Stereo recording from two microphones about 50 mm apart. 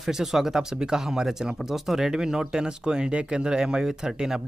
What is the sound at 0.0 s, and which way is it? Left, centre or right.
Speech, centre.